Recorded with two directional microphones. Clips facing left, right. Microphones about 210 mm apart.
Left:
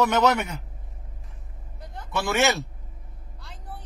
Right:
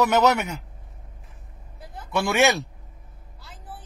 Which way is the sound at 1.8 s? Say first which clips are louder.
Right 3 dB; 5° right (ahead or behind).